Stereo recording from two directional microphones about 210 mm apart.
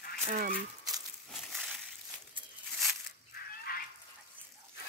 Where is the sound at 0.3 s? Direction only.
40° right (ahead or behind).